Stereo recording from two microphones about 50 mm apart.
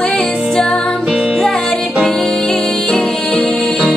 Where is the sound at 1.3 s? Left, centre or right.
Centre.